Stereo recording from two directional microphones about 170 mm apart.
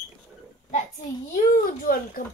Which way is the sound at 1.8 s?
55° left (ahead or behind).